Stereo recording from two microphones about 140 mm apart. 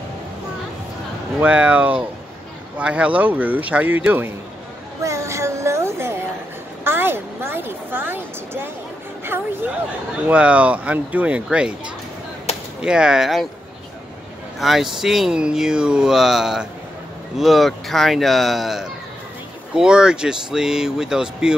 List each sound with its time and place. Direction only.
1.4 s speech: 10° right (ahead or behind)
5.0 s a sound: 20° right (ahead or behind)
9.2 s music: 15° right (ahead or behind)
10.2 s speech: 10° right (ahead or behind)
12.8 s speech: 5° right (ahead or behind)
14.6 s speech: centre (ahead or behind)